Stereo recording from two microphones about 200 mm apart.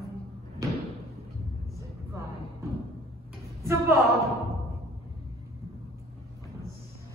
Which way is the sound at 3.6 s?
15° right (ahead or behind).